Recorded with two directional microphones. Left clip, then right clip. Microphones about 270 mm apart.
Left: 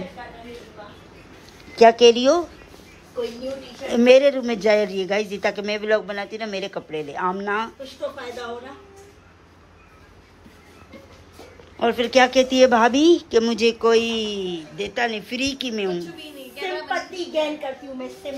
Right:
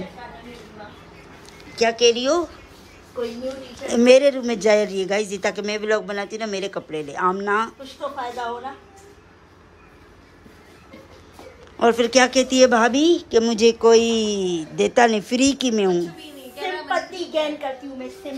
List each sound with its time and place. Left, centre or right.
1.8 s speech: centre
3.9 s speech: centre
11.8 s speech: centre
16.5 s a sound: right